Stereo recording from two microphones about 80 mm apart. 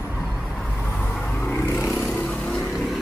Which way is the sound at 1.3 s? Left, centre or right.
Left.